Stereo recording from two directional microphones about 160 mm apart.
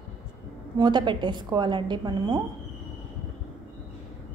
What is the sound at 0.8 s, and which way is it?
A woman's voice, 30° right (ahead or behind).